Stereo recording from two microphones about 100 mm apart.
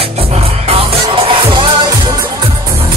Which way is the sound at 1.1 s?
60° right (ahead or behind).